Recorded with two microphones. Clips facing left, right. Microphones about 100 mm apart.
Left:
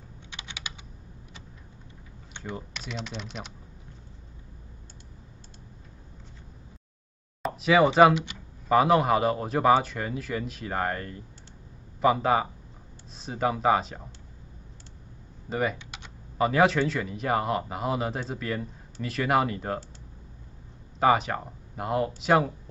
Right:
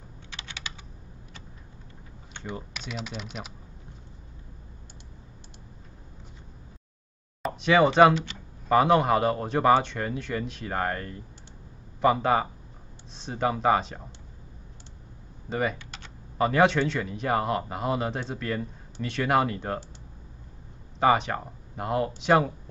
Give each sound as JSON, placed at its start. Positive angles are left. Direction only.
{"t": 0.4, "sound": "computer keyboard", "side_deg": 15}
{"t": 2.5, "sound": "a man's voice", "side_deg": 0}
{"t": 7.4, "sound": "a man's voice", "side_deg": 0}
{"t": 15.5, "sound": "a man's voice", "side_deg": 0}
{"t": 15.8, "sound": "typing", "side_deg": 15}
{"t": 16.3, "sound": "a man's voice", "side_deg": 0}
{"t": 21.0, "sound": "a man's voice", "side_deg": 0}